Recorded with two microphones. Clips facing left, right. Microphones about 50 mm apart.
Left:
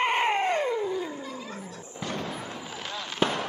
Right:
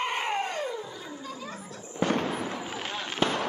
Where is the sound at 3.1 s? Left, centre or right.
Centre.